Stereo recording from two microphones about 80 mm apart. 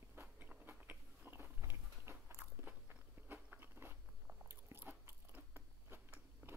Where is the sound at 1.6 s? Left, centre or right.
Right.